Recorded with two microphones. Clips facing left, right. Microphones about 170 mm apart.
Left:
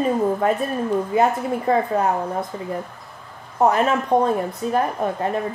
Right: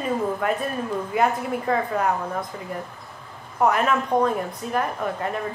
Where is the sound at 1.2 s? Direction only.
30° left (ahead or behind).